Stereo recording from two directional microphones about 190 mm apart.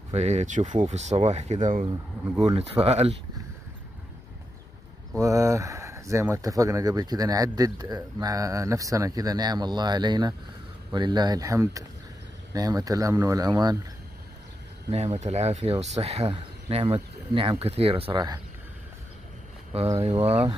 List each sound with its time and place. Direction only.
0.1 s speech: 35° right (ahead or behind)
5.2 s speech: 15° right (ahead or behind)
15.1 s speech: 35° right (ahead or behind)
19.7 s speech: 35° right (ahead or behind)